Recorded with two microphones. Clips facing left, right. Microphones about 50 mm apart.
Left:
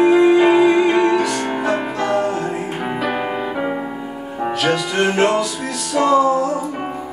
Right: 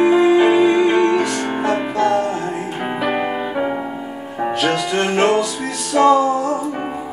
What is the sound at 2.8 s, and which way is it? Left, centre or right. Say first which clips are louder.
Music: right 2 dB; centre.